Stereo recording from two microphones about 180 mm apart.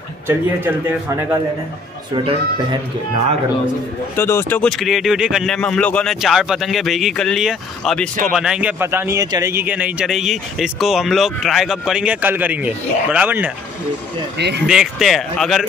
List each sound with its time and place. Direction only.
0.3 s speech: 10° right (ahead or behind)
2.1 s speech: 30° right (ahead or behind)
4.2 s speech: 15° left (ahead or behind); by 13.5 s 10° right (ahead or behind)
14.7 s speech: centre (ahead or behind)